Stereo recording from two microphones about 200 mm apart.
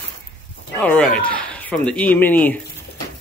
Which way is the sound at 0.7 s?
5° left (ahead or behind).